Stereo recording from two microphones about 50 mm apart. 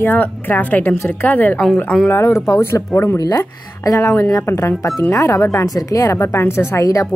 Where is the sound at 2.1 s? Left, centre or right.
Left.